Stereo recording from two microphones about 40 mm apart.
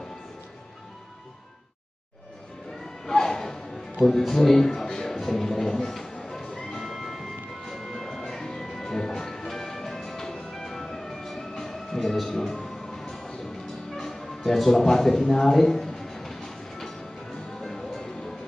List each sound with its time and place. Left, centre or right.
3.1 s music: centre
4.2 s speech: centre
6.3 s music: centre
6.8 s music: centre